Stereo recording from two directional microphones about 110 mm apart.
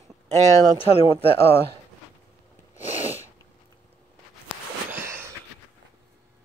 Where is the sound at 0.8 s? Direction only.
60° left (ahead or behind).